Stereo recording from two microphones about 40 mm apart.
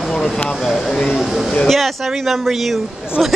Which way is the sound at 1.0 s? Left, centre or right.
Centre.